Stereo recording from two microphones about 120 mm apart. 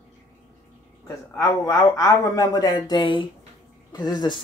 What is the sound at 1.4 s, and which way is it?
Speech, 25° left (ahead or behind).